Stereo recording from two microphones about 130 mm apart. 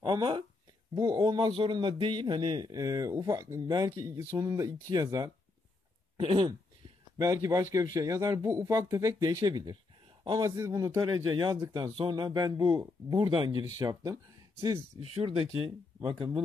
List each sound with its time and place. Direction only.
0.0 s a man's voice: 40° right (ahead or behind)